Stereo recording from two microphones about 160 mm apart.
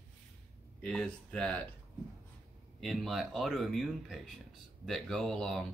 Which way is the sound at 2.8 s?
Centre (ahead or behind).